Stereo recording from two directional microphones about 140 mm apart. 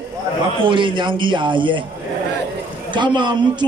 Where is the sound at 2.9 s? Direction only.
35° right (ahead or behind).